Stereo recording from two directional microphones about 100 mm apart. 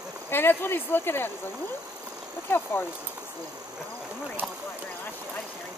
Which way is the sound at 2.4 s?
25° left (ahead or behind).